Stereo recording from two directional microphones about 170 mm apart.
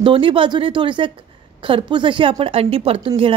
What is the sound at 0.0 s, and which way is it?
Speech, 30° right (ahead or behind).